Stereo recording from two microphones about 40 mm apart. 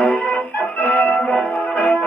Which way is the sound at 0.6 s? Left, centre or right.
Left.